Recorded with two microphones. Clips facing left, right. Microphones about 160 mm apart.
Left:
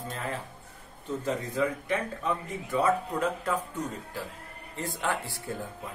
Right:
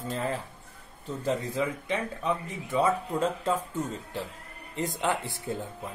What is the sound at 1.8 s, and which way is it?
Speech, 20° right (ahead or behind).